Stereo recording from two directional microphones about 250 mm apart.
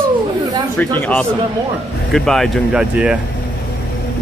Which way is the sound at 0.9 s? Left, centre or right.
Centre.